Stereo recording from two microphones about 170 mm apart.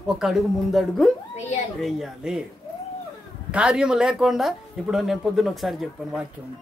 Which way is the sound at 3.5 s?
5° right (ahead or behind).